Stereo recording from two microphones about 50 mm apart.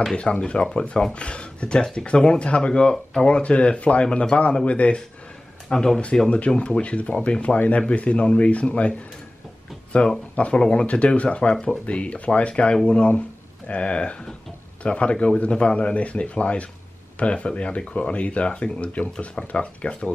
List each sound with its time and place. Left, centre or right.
0.1 s speech: left
5.7 s speech: centre
6.6 s speech: left
9.9 s speech: left